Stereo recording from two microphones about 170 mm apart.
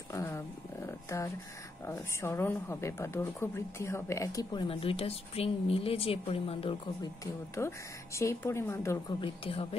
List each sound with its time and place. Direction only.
0.1 s a sound: 15° left (ahead or behind)
1.9 s speech: 15° left (ahead or behind)
4.6 s speech: 35° left (ahead or behind)
7.5 s speech: 15° left (ahead or behind)
9.2 s speech: 35° left (ahead or behind)